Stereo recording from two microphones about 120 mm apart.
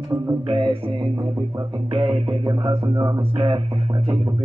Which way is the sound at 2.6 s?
45° right (ahead or behind).